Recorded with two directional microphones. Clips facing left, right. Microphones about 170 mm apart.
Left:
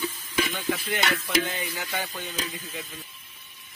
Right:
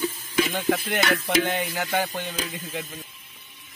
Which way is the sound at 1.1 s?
55° right (ahead or behind).